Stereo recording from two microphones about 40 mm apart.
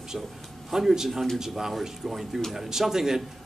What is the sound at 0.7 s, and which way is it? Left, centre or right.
Speech, centre.